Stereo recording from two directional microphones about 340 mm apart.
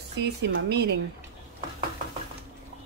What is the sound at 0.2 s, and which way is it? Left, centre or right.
Speech, right.